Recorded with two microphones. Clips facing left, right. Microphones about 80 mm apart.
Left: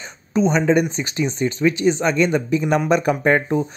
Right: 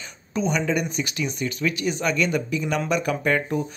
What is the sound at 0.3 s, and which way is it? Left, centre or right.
Speech, left.